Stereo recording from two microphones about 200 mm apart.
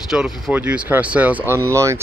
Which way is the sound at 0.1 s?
5° right (ahead or behind).